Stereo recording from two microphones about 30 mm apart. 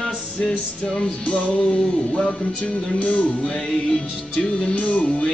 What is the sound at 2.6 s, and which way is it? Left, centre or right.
Music, left.